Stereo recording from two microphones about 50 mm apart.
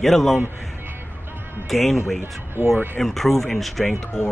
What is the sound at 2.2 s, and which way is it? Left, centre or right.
Speech, right.